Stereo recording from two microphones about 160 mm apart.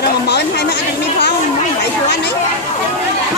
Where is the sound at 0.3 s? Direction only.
90° left.